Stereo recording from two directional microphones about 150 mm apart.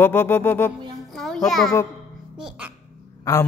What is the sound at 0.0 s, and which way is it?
Music, 15° left (ahead or behind).